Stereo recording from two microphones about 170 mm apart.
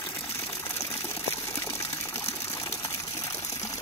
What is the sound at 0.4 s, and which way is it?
Water, 20° left (ahead or behind).